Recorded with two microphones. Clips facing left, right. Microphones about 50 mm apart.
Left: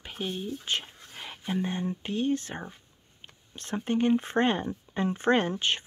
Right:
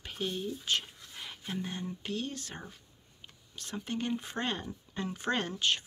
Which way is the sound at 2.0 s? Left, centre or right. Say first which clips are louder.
Left 11 dB; left.